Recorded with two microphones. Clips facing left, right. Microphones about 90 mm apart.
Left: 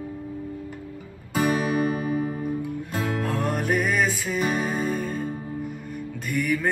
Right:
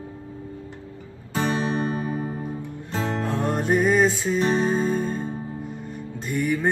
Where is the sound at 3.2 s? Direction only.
25° right (ahead or behind).